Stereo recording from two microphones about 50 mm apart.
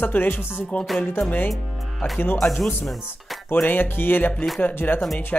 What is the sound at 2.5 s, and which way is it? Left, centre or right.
Speech, centre.